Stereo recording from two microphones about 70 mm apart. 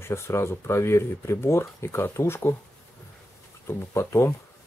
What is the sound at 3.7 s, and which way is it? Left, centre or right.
Speech, left.